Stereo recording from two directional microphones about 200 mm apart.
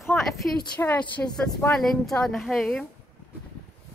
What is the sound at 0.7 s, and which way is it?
Speech, 10° left (ahead or behind).